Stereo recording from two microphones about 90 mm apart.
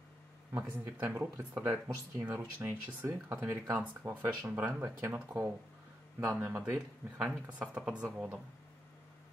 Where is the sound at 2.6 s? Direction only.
25° right (ahead or behind).